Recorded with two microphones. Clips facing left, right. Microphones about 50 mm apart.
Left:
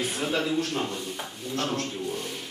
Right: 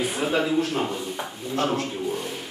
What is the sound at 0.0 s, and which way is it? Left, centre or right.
A man's voice, centre.